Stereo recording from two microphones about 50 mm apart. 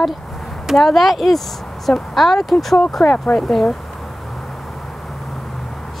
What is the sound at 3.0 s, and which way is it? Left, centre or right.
Speech, left.